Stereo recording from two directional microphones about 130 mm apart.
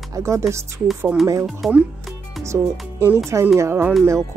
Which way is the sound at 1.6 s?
Centre (ahead or behind).